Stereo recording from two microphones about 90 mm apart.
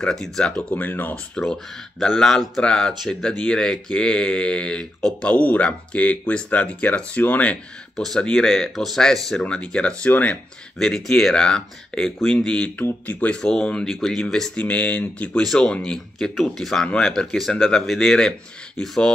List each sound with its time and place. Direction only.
0.0 s speech: 5° left (ahead or behind)
7.9 s speech: 5° left (ahead or behind)
13.4 s speech: 10° left (ahead or behind)